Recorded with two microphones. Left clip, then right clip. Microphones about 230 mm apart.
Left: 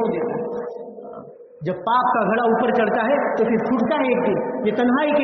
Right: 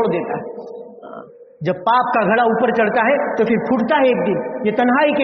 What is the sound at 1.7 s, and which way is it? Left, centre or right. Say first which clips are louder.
A man's voice: right 3 dB; right.